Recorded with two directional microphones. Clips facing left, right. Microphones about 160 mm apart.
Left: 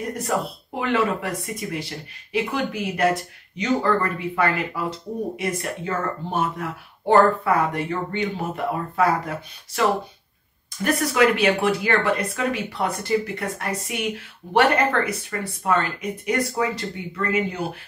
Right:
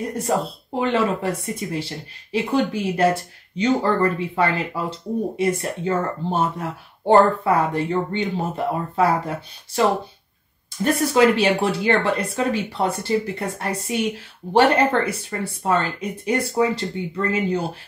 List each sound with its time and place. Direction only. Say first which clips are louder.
0.2 s speech: right 4 dB; 30° right (ahead or behind)